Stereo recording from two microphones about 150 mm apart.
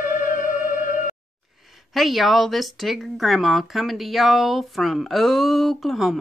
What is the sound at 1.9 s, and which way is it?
Speech, centre (ahead or behind).